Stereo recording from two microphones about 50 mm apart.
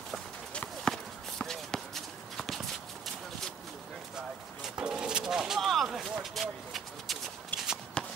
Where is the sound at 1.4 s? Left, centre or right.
Centre.